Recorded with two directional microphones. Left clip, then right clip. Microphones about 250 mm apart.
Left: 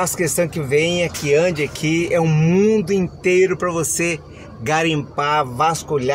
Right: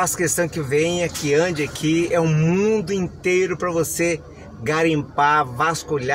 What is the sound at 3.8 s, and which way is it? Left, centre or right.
Speech, left.